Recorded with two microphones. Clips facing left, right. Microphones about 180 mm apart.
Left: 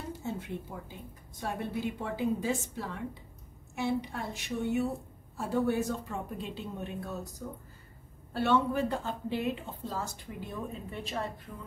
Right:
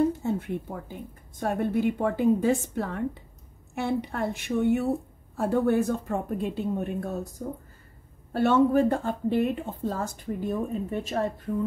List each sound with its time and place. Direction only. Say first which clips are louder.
0.2 s a woman's voice: right 8 dB; 55° right (ahead or behind)